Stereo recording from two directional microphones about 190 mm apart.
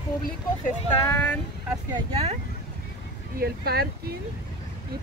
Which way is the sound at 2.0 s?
30° right (ahead or behind).